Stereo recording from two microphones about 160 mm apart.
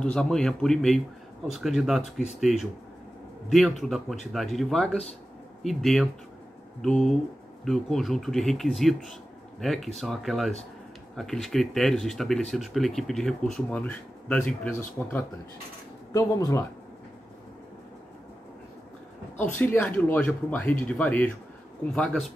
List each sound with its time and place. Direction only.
0.0 s speech: 5° left (ahead or behind)
19.3 s speech: 10° left (ahead or behind)